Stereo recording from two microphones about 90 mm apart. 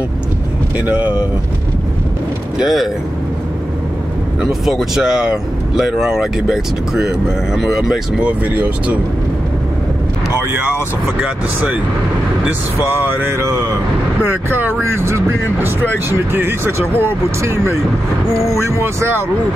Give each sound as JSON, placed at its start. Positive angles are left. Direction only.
{"t": 0.8, "sound": "speech", "side_deg": -15}
{"t": 2.6, "sound": "speech", "side_deg": 0}
{"t": 4.4, "sound": "speech", "side_deg": -5}
{"t": 13.0, "sound": "speech", "side_deg": -25}